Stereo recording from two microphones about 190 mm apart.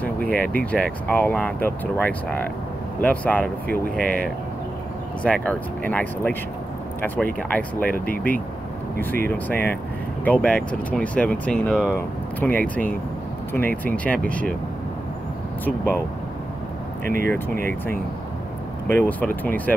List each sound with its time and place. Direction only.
0.0 s speech: 5° left (ahead or behind)
7.3 s speech: 5° left (ahead or behind)
7.9 s speech: 50° left (ahead or behind)
8.9 s speech: 50° right (ahead or behind)
9.3 s speech: 10° left (ahead or behind)
15.6 s speech: 10° left (ahead or behind)
18.9 s speech: 10° left (ahead or behind)